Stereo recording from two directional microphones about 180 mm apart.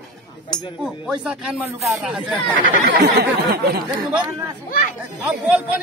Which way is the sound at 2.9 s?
60° right (ahead or behind).